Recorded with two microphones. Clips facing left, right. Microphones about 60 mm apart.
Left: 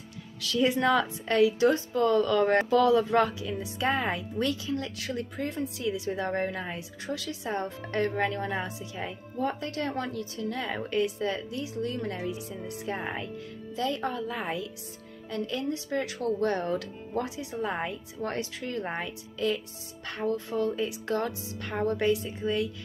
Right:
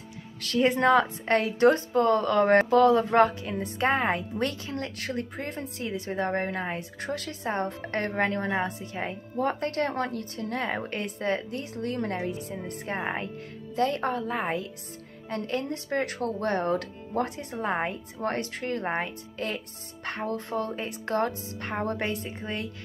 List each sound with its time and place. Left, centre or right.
0.4 s speech: right